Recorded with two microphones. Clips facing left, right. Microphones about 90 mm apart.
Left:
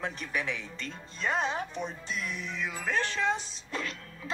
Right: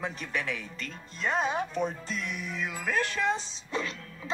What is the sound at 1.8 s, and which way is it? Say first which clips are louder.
Speech: right 5 dB; 50° right (ahead or behind).